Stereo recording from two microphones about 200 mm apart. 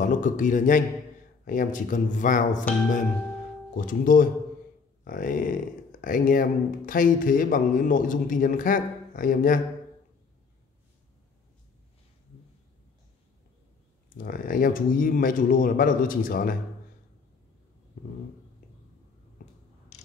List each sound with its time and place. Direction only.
0.0 s speech: 40° left (ahead or behind)
3.7 s speech: 45° left (ahead or behind)
14.1 s speech: 45° left (ahead or behind)
19.9 s mechanisms: 40° left (ahead or behind)